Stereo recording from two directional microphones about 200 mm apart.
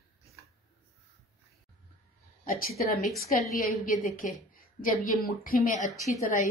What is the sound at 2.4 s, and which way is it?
A woman's voice, 45° left (ahead or behind).